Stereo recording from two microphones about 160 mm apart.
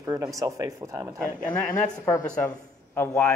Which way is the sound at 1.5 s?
5° left (ahead or behind).